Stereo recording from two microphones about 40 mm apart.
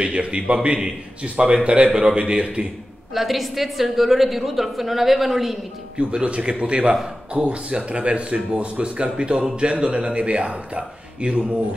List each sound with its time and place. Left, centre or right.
0.0 s speech: right
3.2 s a woman's voice: centre
5.9 s speech: right